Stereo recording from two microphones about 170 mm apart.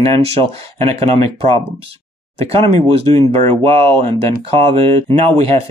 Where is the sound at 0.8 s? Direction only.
40° right (ahead or behind).